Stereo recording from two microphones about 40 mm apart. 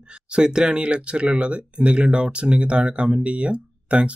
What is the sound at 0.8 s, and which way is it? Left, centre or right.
Speech, right.